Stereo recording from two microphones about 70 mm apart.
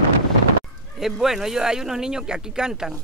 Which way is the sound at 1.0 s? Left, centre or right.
Centre.